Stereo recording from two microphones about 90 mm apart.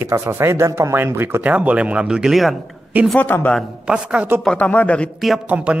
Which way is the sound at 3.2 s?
20° left (ahead or behind).